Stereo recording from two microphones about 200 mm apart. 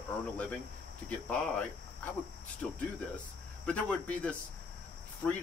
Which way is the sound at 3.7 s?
5° left (ahead or behind).